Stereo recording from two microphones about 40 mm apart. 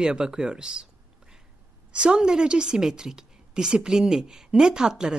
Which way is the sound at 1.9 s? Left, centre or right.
Right.